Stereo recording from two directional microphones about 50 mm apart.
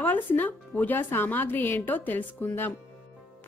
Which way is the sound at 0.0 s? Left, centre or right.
Left.